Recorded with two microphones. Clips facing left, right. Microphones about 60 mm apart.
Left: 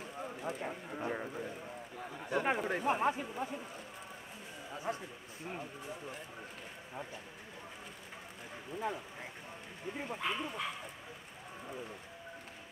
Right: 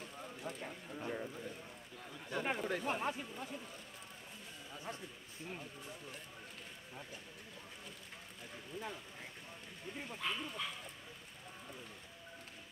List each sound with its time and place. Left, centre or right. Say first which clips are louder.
0.2 s a sound: left 7 dB; left
0.6 s speech: left 6 dB; left
2.0 s a sound: left 6 dB; left
2.8 s speech: left 6 dB; centre
4.7 s a man's voice: left 8 dB; centre
5.5 s speech: left 6 dB; left
8.7 s speech: left 8 dB; centre